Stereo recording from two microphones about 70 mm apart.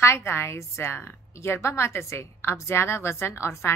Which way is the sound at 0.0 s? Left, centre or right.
Left.